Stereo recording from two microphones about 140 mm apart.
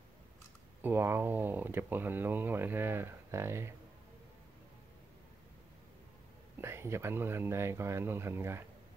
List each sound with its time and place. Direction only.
0.8 s speech: 15° right (ahead or behind)
6.6 s speech: 20° right (ahead or behind)